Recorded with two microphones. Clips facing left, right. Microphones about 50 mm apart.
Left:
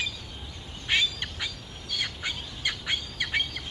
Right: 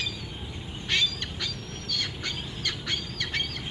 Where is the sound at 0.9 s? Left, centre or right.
Centre.